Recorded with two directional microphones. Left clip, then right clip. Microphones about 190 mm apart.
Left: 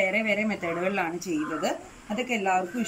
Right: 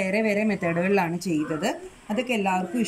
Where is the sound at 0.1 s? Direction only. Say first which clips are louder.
Right 2 dB; 45° right (ahead or behind).